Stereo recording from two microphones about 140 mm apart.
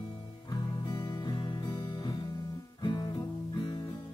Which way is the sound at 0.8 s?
30° left (ahead or behind).